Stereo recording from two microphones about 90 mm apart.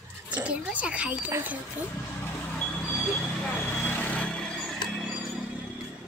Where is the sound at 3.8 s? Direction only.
20° left (ahead or behind).